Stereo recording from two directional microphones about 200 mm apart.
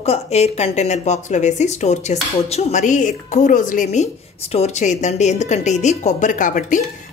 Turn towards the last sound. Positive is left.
turn(degrees=40)  # may be behind; listen again after turning